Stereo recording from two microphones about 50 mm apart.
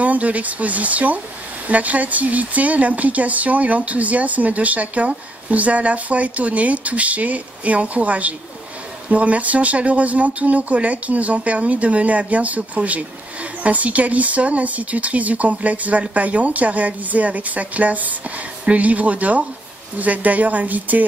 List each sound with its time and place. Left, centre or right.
0.0 s speech: right